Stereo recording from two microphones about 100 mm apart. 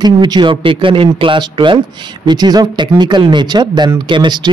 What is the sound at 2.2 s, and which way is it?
A man's voice, 45° right (ahead or behind).